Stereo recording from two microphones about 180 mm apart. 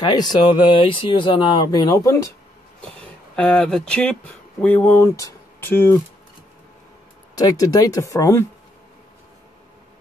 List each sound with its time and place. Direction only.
0.0 s speech: 25° left (ahead or behind)
3.0 s speech: 5° left (ahead or behind)
7.3 s speech: 20° left (ahead or behind)